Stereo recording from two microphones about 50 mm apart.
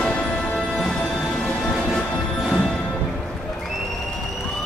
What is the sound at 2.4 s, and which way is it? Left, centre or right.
Music, centre.